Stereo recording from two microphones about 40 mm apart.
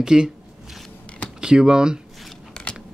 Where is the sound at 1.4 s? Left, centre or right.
Centre.